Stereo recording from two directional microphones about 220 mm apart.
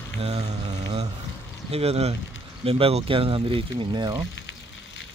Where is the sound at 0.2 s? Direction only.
25° right (ahead or behind).